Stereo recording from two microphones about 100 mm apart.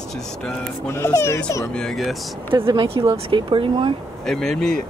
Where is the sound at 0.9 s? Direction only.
30° left (ahead or behind).